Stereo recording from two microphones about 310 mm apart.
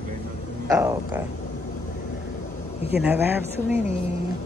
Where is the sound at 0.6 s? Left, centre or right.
Centre.